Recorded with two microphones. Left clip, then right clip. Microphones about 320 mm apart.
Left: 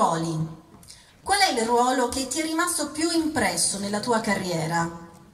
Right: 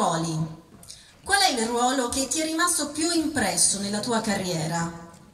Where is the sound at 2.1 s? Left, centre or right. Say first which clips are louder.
Right 1 dB; centre.